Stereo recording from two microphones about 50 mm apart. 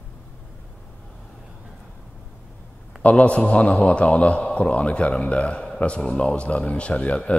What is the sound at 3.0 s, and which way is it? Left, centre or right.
A man's voice, left.